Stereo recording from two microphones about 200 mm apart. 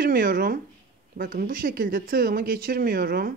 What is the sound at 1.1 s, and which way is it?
A woman's voice, 45° right (ahead or behind).